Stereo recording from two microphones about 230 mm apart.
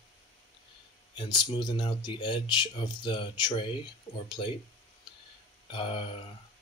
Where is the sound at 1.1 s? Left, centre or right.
Centre.